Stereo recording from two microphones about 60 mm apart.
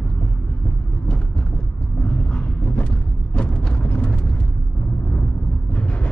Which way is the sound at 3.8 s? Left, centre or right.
Left.